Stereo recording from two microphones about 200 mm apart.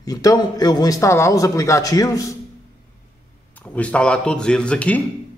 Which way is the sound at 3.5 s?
10° left (ahead or behind).